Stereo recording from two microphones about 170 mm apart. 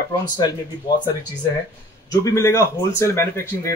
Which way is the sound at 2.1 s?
20° left (ahead or behind).